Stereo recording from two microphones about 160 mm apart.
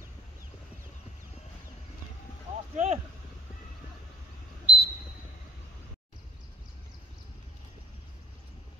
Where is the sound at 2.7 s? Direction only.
45° right (ahead or behind).